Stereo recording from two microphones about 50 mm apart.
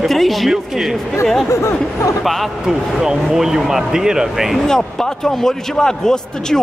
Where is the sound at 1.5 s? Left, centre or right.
Left.